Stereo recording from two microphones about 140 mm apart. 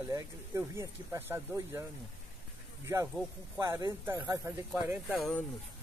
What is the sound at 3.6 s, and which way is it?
Speech, 20° right (ahead or behind).